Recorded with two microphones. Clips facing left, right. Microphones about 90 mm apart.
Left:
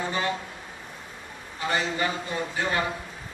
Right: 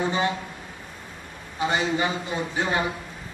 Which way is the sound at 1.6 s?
15° right (ahead or behind).